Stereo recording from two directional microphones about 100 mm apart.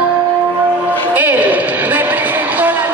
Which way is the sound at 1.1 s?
20° right (ahead or behind).